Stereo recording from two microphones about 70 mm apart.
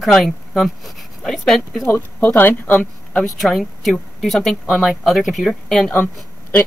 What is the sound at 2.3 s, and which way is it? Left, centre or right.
Speech, left.